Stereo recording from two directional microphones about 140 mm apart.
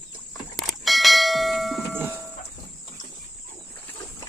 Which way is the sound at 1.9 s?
15° right (ahead or behind).